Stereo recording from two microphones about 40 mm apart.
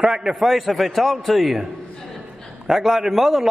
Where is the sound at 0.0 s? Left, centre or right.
Centre.